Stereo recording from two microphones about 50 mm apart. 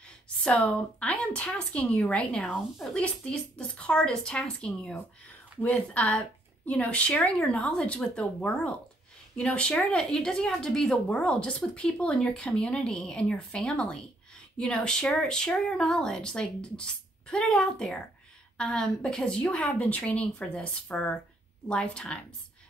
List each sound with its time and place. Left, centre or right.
0.9 s speech: left; by 4.9 s centre
5.6 s speech: left